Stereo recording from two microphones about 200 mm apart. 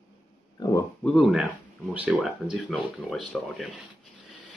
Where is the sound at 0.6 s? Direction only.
20° left (ahead or behind).